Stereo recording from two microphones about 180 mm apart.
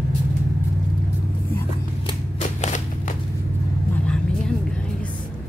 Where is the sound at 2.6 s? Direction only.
40° left (ahead or behind).